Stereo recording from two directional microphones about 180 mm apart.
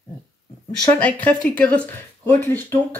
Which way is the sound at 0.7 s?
10° left (ahead or behind).